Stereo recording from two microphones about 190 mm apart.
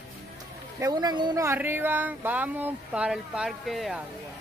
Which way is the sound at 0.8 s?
20° right (ahead or behind).